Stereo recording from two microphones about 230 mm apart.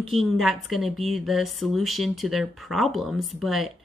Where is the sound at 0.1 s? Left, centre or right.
Centre.